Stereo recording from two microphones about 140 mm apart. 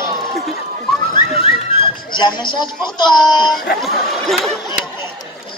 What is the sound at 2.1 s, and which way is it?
Speech, 35° left (ahead or behind).